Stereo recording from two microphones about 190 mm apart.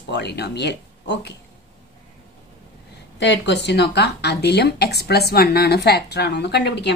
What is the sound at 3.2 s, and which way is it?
Speech, 65° left (ahead or behind).